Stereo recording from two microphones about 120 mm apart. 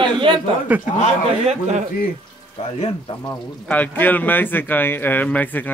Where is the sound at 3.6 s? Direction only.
15° left (ahead or behind).